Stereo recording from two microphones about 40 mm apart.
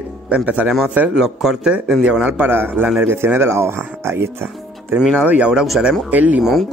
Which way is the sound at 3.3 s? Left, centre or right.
Right.